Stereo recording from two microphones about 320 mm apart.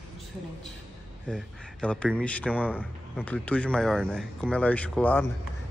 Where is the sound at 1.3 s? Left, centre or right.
Centre.